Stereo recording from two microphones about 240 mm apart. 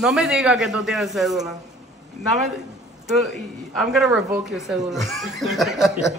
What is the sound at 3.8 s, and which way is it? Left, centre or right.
Speech, centre.